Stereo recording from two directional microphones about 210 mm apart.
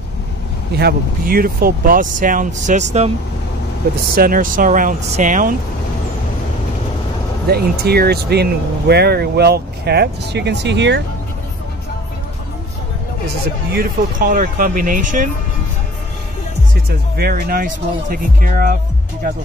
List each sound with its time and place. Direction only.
0.7 s speech: 45° right (ahead or behind)
4.1 s speech: 45° right (ahead or behind)
7.4 s speech: 50° right (ahead or behind)
14.2 s speech: 40° right (ahead or behind)
17.2 s speech: 45° right (ahead or behind)